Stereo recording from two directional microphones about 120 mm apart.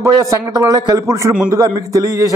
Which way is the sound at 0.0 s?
25° right (ahead or behind).